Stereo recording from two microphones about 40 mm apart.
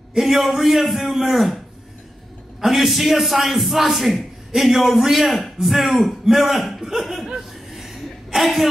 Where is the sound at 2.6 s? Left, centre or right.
Centre.